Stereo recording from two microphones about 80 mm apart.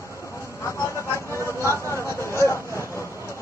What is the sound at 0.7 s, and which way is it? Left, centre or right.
Speech, left.